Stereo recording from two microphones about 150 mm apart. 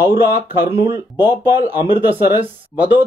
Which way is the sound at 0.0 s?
15° right (ahead or behind).